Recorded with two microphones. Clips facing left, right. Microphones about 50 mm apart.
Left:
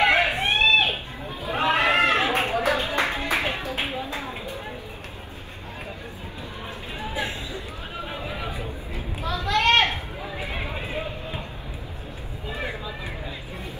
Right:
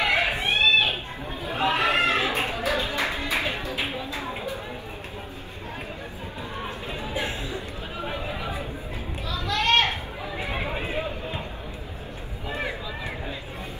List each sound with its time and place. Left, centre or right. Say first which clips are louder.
0.0 s chicken: left 3 dB; left
1.5 s music: left 2 dB; left
9.2 s a sound: left 4 dB; left
10.5 s run: right 4 dB; centre